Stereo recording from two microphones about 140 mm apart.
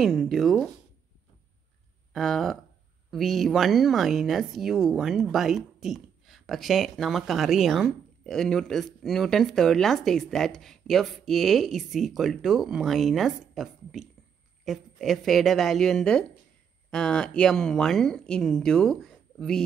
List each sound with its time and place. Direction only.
0.0 s a woman's voice: centre (ahead or behind)
2.1 s a woman's voice: 5° left (ahead or behind)